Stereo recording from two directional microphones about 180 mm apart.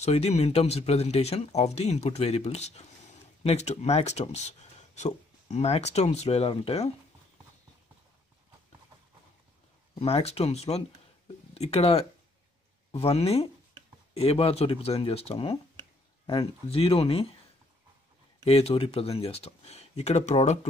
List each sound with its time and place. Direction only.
0.0 s speech: 35° left (ahead or behind)
9.9 s speech: 35° left (ahead or behind)
18.4 s speech: 35° left (ahead or behind)